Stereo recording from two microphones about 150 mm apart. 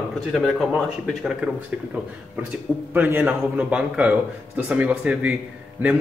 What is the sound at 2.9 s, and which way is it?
A man's voice, 10° right (ahead or behind).